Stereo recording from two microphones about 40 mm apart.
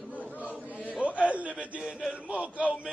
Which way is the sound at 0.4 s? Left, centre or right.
Right.